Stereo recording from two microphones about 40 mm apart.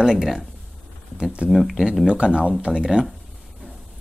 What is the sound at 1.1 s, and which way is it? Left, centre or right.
Speech, right.